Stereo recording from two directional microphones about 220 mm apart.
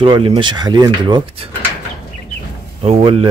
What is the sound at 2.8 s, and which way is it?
Speech, 25° right (ahead or behind).